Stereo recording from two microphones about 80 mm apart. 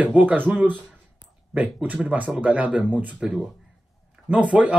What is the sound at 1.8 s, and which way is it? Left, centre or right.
Speech, centre.